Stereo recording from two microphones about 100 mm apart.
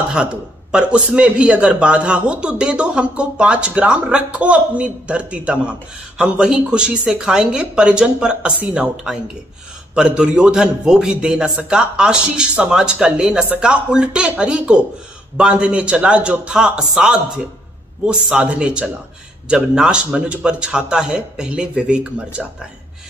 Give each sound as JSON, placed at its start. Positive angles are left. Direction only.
{"t": 0.1, "sound": "a man's voice", "side_deg": -10}